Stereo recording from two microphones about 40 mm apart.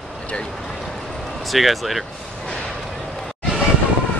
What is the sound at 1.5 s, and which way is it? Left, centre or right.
Speech, centre.